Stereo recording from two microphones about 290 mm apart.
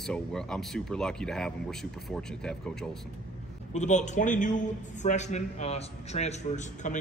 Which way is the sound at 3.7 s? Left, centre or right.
Left.